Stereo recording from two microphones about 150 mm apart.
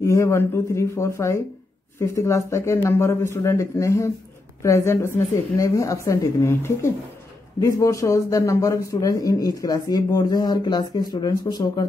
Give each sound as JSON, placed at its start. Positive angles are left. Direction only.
{"t": 0.0, "sound": "a man's voice", "side_deg": 20}